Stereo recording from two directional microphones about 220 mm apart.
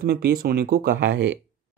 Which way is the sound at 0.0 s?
45° right (ahead or behind).